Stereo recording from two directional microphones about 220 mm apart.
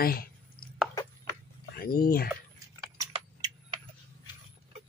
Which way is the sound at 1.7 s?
40° left (ahead or behind).